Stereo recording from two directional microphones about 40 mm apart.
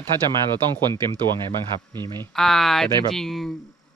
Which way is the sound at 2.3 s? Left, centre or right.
Centre.